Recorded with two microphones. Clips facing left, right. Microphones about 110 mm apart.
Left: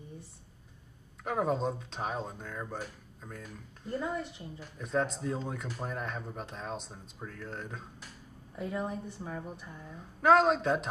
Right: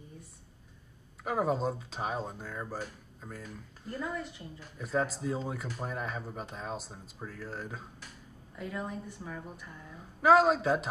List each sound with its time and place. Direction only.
1.2 s speech: 5° right (ahead or behind)
4.0 s a woman's voice: 25° left (ahead or behind)
4.7 s speech: 5° right (ahead or behind)
8.5 s a woman's voice: 25° left (ahead or behind)
9.9 s speech: 5° right (ahead or behind)